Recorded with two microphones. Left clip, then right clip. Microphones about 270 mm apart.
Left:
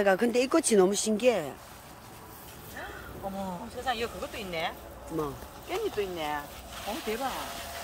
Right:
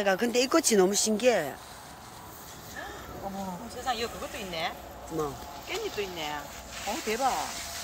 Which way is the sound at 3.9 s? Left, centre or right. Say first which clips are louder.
Even; centre.